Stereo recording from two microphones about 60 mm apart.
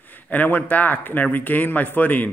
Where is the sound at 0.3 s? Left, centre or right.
Left.